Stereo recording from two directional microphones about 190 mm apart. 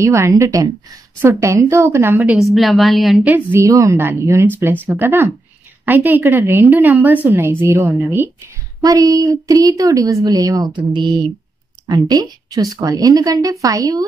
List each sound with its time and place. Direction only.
0.0 s a woman's voice: 15° right (ahead or behind)